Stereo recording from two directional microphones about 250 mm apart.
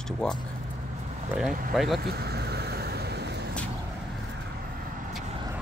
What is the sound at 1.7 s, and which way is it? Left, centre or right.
Speech, centre.